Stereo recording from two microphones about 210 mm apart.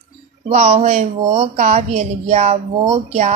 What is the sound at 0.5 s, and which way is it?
Mantra, 30° right (ahead or behind).